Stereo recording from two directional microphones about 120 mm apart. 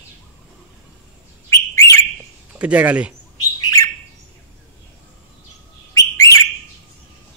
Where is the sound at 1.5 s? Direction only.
25° left (ahead or behind).